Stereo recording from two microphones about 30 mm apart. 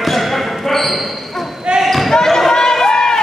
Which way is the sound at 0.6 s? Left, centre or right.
Centre.